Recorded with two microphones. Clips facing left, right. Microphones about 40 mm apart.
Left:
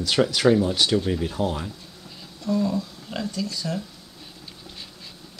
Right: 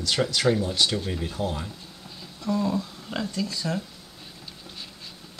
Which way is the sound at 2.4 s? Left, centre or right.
Centre.